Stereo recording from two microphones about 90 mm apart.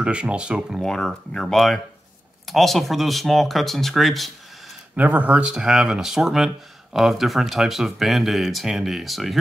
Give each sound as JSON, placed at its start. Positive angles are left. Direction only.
{"t": 0.0, "sound": "speech", "side_deg": -10}
{"t": 0.7, "sound": "speech", "side_deg": 5}
{"t": 4.9, "sound": "speech", "side_deg": -15}